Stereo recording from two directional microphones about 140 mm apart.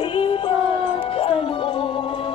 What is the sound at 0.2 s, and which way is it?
Music, 40° left (ahead or behind).